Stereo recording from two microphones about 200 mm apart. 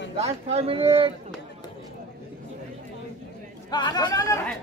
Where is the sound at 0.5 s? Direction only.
30° right (ahead or behind).